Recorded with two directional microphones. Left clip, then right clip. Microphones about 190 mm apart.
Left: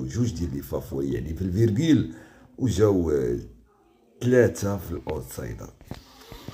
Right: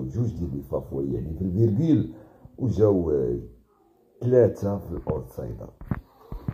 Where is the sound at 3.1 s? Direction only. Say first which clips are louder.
Even; 15° left (ahead or behind).